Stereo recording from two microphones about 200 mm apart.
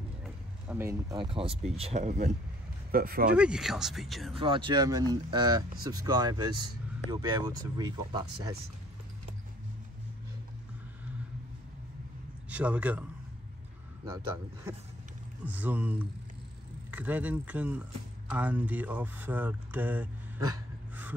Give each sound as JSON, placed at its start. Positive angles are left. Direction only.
{"t": 0.2, "sound": "a sound", "side_deg": -10}
{"t": 1.6, "sound": "speech", "side_deg": -35}
{"t": 3.3, "sound": "speech", "side_deg": -5}
{"t": 4.4, "sound": "speech", "side_deg": -25}
{"t": 12.4, "sound": "a man's voice", "side_deg": -5}
{"t": 14.0, "sound": "speech", "side_deg": -10}